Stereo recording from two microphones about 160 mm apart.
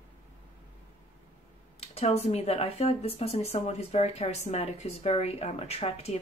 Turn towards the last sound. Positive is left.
turn(degrees=40)  # may be behind; listen again after turning